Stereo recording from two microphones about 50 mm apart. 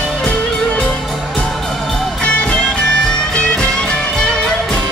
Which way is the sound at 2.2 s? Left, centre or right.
Left.